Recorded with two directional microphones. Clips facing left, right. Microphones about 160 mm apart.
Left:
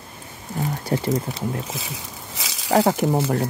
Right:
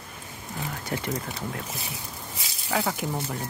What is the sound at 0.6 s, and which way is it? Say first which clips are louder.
Speech: left 8 dB; 35° left (ahead or behind).